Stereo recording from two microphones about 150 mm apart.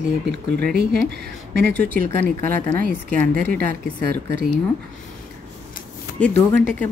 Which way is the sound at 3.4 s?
85° right.